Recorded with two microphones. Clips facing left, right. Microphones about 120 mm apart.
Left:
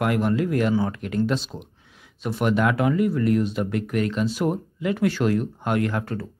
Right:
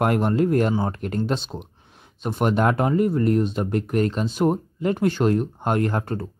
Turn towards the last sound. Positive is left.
turn(degrees=-40)  # may be behind; listen again after turning